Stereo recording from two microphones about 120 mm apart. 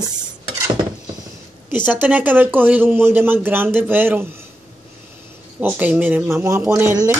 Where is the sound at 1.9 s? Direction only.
15° right (ahead or behind).